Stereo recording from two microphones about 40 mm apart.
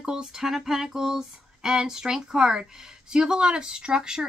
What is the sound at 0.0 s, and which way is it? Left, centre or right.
Speech, centre.